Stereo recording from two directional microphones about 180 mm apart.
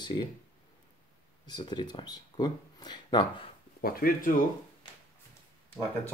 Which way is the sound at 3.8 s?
50° left (ahead or behind).